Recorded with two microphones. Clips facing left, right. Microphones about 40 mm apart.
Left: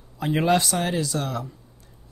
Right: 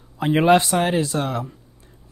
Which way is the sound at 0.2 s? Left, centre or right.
Right.